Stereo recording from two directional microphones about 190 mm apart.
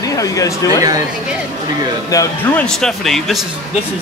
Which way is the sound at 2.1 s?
15° left (ahead or behind).